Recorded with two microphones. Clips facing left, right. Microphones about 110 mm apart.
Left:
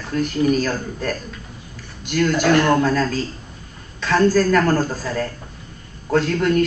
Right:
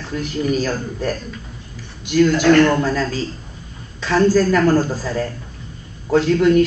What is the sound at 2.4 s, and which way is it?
Speech, 10° left (ahead or behind).